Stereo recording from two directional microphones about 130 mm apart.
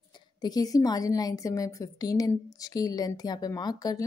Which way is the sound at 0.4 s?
30° left (ahead or behind).